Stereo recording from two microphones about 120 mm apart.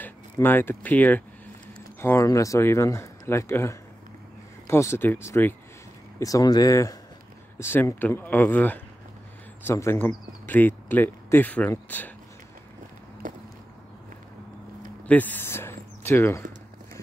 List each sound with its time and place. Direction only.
0.0 s speech: 15° left (ahead or behind)
13.2 s a sound: 90° right
15.0 s speech: 15° left (ahead or behind)